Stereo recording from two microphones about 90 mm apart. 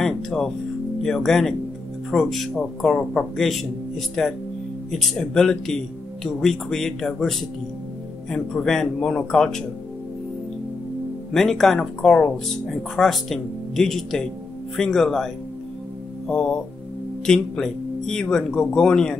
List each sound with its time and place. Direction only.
0.0 s speech: 5° left (ahead or behind)
11.3 s speech: 5° left (ahead or behind)
16.3 s music: 10° left (ahead or behind)
17.3 s speech: 5° left (ahead or behind)